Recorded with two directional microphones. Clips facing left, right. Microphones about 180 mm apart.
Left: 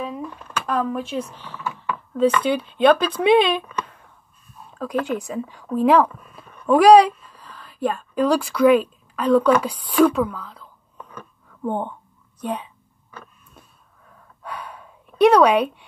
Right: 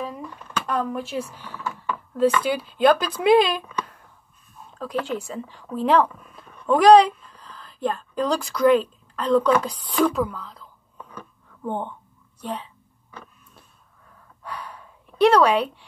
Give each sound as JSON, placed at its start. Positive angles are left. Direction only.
{"t": 0.7, "sound": "speech", "side_deg": 0}
{"t": 4.8, "sound": "speech", "side_deg": 15}
{"t": 11.6, "sound": "speech", "side_deg": 15}
{"t": 14.4, "sound": "gasp", "side_deg": 25}